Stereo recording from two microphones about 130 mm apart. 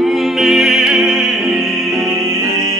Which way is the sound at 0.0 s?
Centre (ahead or behind).